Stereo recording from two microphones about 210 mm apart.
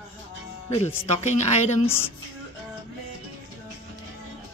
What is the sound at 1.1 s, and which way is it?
Speech, 30° left (ahead or behind).